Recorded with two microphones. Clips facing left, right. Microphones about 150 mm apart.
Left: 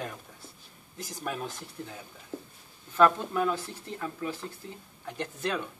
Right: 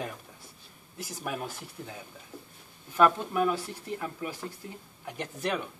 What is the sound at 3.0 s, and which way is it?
Speech, 10° right (ahead or behind).